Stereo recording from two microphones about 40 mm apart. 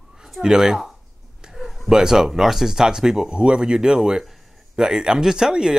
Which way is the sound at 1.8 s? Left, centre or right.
Centre.